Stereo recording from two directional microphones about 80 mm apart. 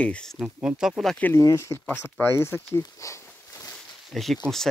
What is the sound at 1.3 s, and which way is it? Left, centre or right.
Speech, left.